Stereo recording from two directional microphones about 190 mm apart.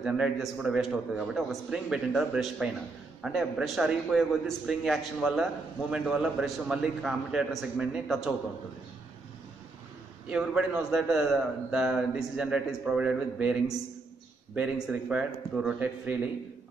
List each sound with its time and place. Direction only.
0.0 s a man's voice: centre (ahead or behind)
10.3 s a man's voice: 5° right (ahead or behind)